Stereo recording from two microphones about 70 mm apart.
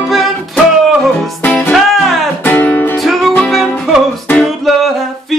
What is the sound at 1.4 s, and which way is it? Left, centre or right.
Music, centre.